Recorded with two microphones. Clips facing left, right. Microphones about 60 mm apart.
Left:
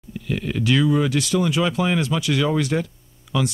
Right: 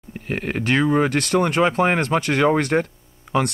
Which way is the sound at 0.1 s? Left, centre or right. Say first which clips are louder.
Right 1 dB; right.